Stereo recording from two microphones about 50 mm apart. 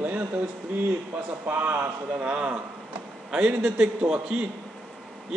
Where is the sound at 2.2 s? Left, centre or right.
Right.